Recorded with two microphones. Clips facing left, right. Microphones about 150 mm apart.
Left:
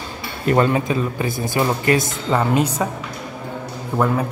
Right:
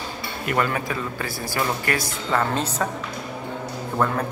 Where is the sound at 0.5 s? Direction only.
25° left (ahead or behind).